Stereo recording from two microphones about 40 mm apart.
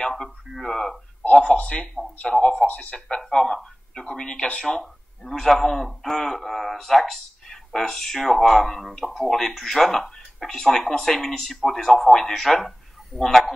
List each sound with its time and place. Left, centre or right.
0.0 s speech: centre
1.5 s speech: left
2.3 s speech: centre
2.6 s speech: left
3.2 s speech: centre
5.2 s a man's voice: centre